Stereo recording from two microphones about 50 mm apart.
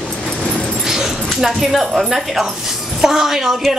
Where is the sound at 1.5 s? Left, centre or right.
Centre.